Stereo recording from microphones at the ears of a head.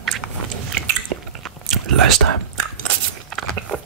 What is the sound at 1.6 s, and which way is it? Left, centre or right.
Biting, right.